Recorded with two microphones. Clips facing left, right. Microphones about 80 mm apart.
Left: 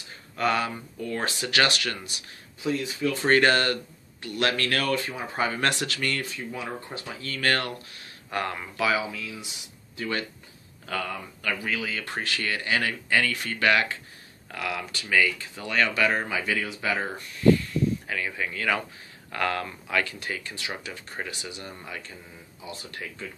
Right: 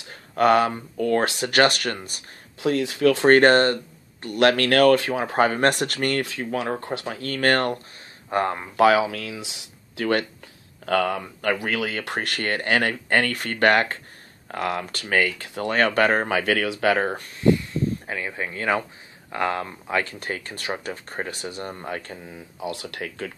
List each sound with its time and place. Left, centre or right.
0.1 s speech: right
2.7 s speech: right
3.3 s speech: right
4.4 s speech: right
5.6 s speech: right
6.2 s speech: right
8.3 s speech: right
8.7 s speech: right
15.7 s speech: right
17.4 s speech: right